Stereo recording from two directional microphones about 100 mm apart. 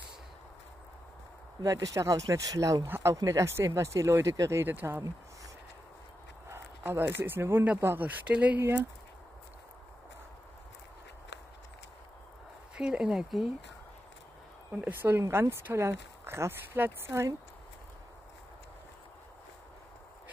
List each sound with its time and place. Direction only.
1.6 s speech: 35° right (ahead or behind)
2.9 s speech: 25° right (ahead or behind)
6.5 s speech: 25° right (ahead or behind)
12.7 s speech: 10° right (ahead or behind)
14.7 s speech: 20° right (ahead or behind)